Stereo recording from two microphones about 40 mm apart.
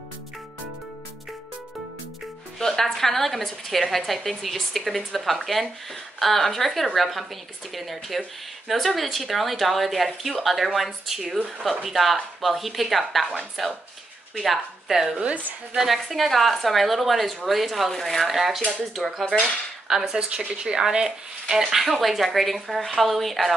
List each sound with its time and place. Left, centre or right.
2.6 s a woman's voice: centre
19.9 s speech: centre
21.6 s a woman's voice: centre